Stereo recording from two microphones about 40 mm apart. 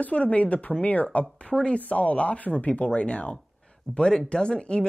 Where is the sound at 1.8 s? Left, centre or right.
Left.